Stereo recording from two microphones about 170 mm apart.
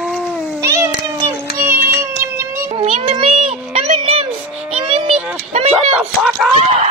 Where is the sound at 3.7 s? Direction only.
35° right (ahead or behind).